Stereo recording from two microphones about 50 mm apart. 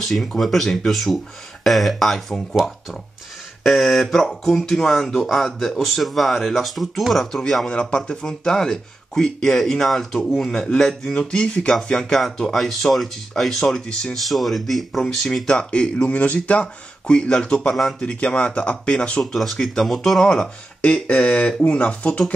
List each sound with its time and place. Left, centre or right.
0.0 s speech: centre
3.6 s speech: centre
7.7 s speech: centre
14.1 s speech: centre
15.7 s speech: left
19.3 s speech: centre
20.8 s speech: left